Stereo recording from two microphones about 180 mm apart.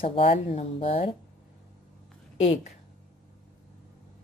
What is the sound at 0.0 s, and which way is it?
Speech, 30° left (ahead or behind).